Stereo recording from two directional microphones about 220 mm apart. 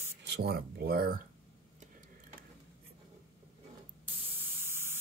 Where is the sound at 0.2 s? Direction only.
50° right (ahead or behind).